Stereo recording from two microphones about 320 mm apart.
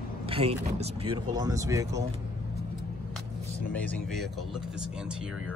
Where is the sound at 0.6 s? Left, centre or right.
Centre.